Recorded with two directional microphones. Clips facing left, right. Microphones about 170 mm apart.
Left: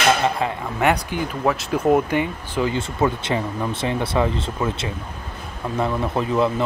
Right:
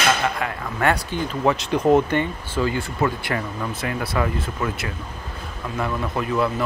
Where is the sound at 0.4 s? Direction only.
30° left (ahead or behind).